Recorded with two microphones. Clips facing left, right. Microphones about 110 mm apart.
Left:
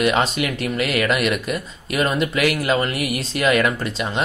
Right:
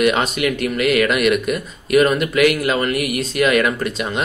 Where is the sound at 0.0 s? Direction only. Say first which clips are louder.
Right 2 dB; 30° left (ahead or behind).